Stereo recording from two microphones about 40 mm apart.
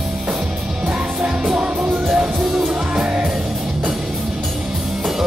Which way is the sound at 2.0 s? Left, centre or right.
Centre.